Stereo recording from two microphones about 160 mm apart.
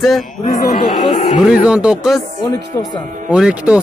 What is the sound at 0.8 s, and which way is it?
Speech, 30° left (ahead or behind).